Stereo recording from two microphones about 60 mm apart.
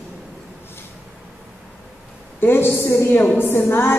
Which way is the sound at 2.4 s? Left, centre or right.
Left.